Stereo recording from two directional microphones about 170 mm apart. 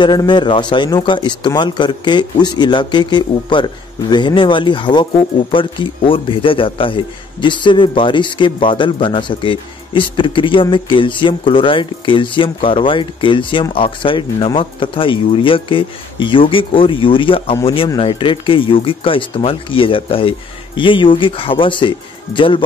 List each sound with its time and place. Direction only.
0.0 s a man's voice: 25° left (ahead or behind)